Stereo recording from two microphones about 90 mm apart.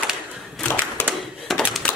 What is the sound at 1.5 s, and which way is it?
Typewriter, centre (ahead or behind).